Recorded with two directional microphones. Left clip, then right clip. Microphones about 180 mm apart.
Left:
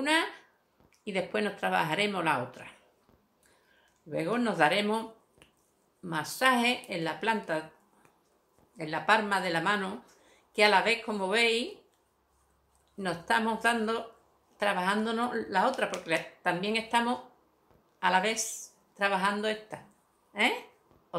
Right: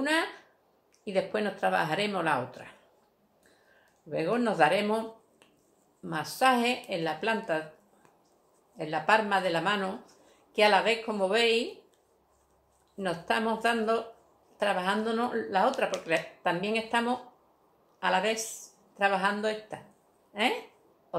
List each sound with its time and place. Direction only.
0.0 s a woman's voice: 15° left (ahead or behind)
4.1 s a woman's voice: 20° left (ahead or behind)
6.3 s a woman's voice: 20° left (ahead or behind)
8.7 s a woman's voice: 20° left (ahead or behind)
12.9 s a woman's voice: 20° left (ahead or behind)